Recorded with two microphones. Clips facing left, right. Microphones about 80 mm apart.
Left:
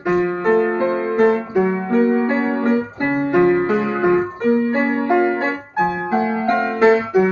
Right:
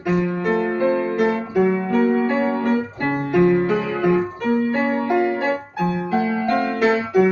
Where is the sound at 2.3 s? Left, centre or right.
Left.